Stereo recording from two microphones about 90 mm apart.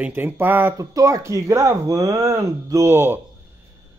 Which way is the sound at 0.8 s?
40° right (ahead or behind).